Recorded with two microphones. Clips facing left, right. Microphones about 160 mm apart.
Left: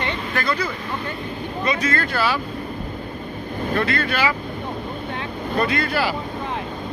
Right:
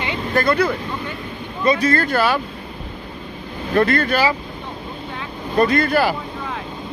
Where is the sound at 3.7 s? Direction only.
45° right (ahead or behind).